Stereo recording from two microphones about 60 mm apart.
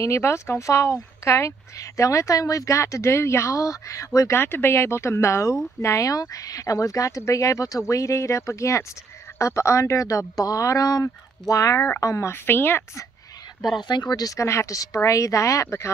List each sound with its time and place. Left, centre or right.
0.0 s speech: left
4.3 s a woman's voice: left
12.3 s a woman's voice: left
14.0 s speech: left
14.4 s speech: left